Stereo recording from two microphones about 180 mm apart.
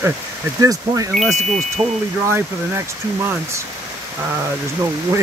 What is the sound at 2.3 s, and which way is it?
Speech, 15° right (ahead or behind).